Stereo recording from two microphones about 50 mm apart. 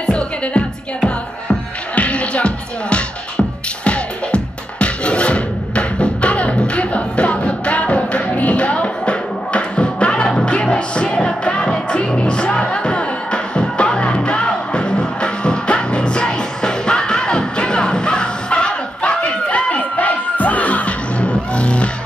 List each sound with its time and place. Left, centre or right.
0.0 s music: left